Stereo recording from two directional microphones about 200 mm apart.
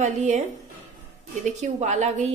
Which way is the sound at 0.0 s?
35° right (ahead or behind).